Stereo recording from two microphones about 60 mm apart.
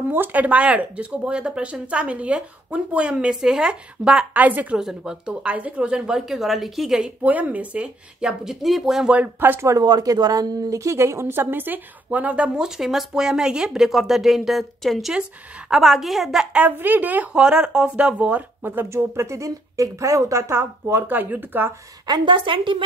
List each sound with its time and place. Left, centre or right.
0.1 s speech: right; by 4.4 s centre
4.4 s speech: right
4.7 s speech: centre
7.2 s speech: right
8.6 s speech: centre
9.1 s speech: right
9.8 s speech: right
12.5 s speech: centre
16.7 s a woman's voice: right
17.3 s speech: centre
18.6 s speech: right
18.9 s speech: right